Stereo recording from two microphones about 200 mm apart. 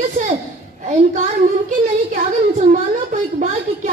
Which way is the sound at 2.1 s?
40° right (ahead or behind).